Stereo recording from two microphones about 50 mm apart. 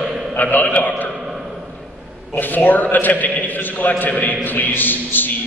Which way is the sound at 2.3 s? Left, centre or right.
Left.